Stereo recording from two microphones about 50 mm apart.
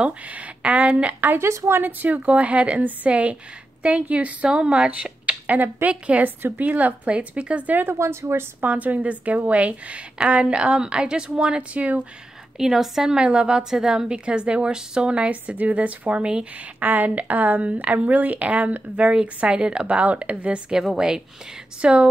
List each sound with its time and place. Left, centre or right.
0.0 s a woman's voice: right
1.2 s a woman's voice: right
5.5 s speech: right
5.9 s a woman's voice: right
7.9 s a woman's voice: right
8.5 s a woman's voice: right
12.5 s speech: centre
13.2 s a woman's voice: centre
16.8 s a woman's voice: right
20.7 s a woman's voice: centre